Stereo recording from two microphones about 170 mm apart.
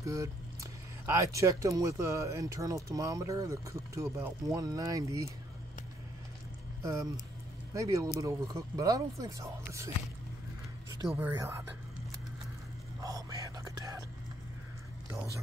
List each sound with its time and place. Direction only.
0.0 s speech: 20° right (ahead or behind)
6.8 s speech: 20° right (ahead or behind)
11.1 s speech: 10° right (ahead or behind)
13.0 s whispering: 20° right (ahead or behind)